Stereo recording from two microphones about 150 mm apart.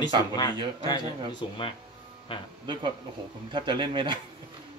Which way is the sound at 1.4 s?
35° left (ahead or behind).